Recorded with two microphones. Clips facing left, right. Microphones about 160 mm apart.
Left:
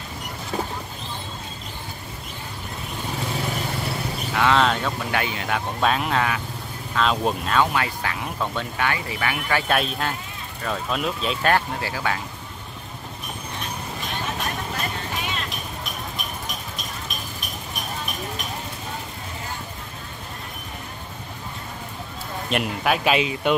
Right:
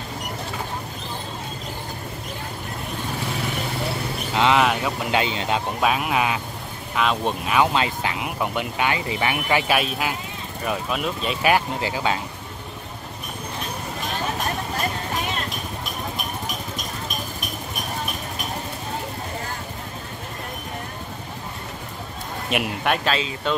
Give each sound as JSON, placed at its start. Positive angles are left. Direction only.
{"t": 4.3, "sound": "a sound", "side_deg": -20}
{"t": 4.6, "sound": "speech", "side_deg": -10}
{"t": 5.2, "sound": "speech", "side_deg": -20}
{"t": 5.8, "sound": "speech", "side_deg": -5}
{"t": 7.5, "sound": "speech", "side_deg": -20}
{"t": 9.7, "sound": "speech", "side_deg": -5}
{"t": 22.5, "sound": "speech", "side_deg": -5}
{"t": 23.0, "sound": "speech", "side_deg": 15}